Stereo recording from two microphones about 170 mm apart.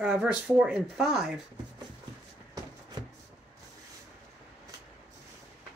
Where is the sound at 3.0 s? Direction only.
25° right (ahead or behind).